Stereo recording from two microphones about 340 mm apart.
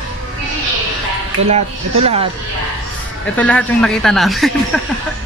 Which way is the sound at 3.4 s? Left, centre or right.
Centre.